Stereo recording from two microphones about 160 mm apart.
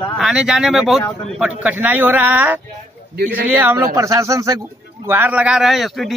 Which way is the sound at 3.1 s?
70° right (ahead or behind).